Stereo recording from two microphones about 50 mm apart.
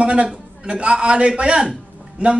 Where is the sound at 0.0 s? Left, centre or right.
Right.